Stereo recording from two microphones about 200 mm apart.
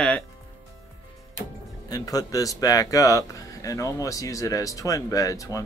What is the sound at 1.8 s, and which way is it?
Speech, 20° left (ahead or behind).